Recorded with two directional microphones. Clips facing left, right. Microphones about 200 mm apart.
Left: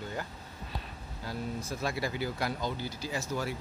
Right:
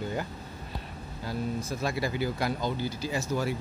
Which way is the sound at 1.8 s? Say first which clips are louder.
Right 3 dB; 20° right (ahead or behind).